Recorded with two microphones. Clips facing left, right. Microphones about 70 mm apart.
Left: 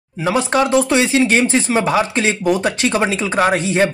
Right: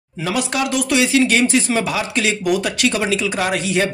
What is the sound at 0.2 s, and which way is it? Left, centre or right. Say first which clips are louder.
Speech: left 5 dB; left.